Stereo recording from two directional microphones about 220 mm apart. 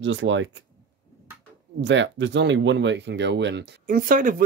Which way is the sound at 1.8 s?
55° right (ahead or behind).